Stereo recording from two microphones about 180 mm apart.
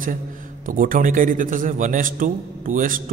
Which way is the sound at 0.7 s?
50° right (ahead or behind).